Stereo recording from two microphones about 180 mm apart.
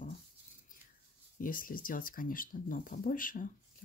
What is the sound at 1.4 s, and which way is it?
Speech, 50° left (ahead or behind).